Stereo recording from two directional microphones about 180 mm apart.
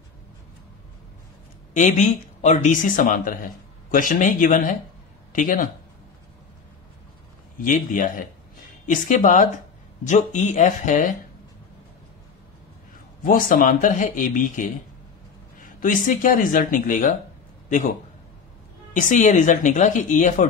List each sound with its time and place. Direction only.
1.7 s a man's voice: 40° left (ahead or behind)
7.6 s a man's voice: 45° left (ahead or behind)
13.2 s a man's voice: 50° left (ahead or behind)
15.8 s a man's voice: 50° left (ahead or behind)
18.9 s a man's voice: 45° left (ahead or behind)